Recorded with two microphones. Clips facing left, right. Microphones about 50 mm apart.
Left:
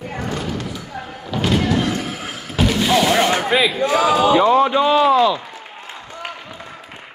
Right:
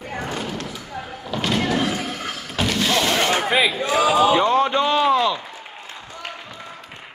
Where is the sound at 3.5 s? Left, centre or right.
Centre.